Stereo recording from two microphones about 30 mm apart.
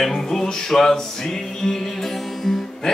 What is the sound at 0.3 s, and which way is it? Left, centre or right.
Speech, centre.